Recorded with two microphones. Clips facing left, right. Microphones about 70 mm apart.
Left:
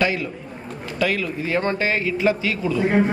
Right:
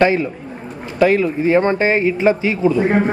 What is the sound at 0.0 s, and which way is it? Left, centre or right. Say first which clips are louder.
Speech: right 7 dB; right.